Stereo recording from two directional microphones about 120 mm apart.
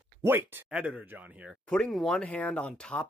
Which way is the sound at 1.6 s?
5° left (ahead or behind).